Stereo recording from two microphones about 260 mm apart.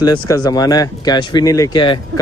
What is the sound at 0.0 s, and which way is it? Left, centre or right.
Speech, centre.